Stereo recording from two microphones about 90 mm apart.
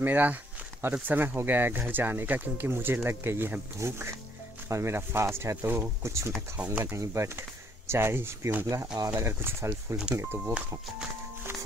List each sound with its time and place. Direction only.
0.0 s speech: 20° right (ahead or behind)
8.6 s speech: 40° right (ahead or behind)
9.1 s speech: 25° right (ahead or behind)